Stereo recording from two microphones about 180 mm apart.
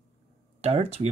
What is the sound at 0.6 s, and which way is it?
Speech, 35° right (ahead or behind).